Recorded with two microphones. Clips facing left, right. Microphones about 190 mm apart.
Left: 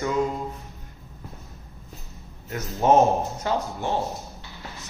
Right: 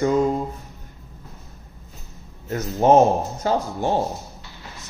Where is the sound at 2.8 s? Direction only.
35° right (ahead or behind).